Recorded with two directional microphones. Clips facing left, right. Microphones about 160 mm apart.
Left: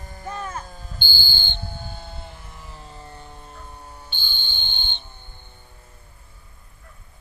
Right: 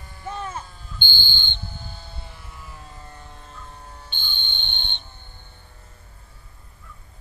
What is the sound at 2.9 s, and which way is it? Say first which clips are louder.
Music: left 2 dB; 25° left (ahead or behind).